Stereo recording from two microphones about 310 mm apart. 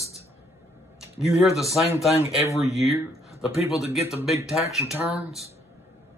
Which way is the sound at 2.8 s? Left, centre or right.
Centre.